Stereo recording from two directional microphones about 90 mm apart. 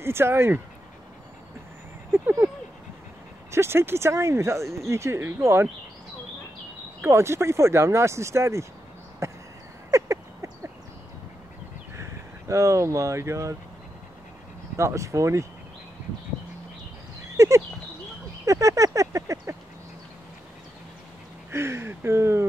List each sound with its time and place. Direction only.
0.0 s speech: 30° right (ahead or behind)
3.5 s speech: 25° right (ahead or behind)
7.0 s speech: 30° right (ahead or behind)
9.2 s a sound: 30° right (ahead or behind)
12.0 s speech: 35° right (ahead or behind)
14.8 s speech: 35° right (ahead or behind)
17.4 s a sound: 35° right (ahead or behind)
18.4 s speech: 40° right (ahead or behind)
21.5 s speech: 30° right (ahead or behind)